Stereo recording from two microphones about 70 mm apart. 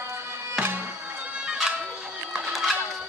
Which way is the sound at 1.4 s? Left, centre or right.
Centre.